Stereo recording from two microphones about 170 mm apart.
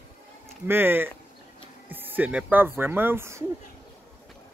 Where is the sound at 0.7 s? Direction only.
15° right (ahead or behind).